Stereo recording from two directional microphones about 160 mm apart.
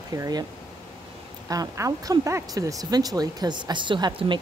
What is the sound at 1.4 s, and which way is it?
Speech, 20° right (ahead or behind).